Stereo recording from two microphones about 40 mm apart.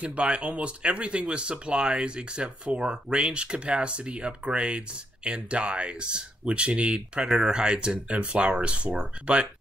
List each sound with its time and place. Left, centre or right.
0.0 s speech: right